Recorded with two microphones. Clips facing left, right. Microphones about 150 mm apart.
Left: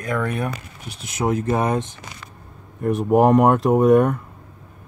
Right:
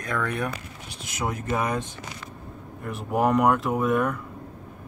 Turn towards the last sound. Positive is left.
turn(degrees=45)  # may be behind; listen again after turning